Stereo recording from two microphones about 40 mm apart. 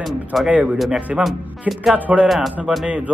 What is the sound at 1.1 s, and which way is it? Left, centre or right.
Speech, right.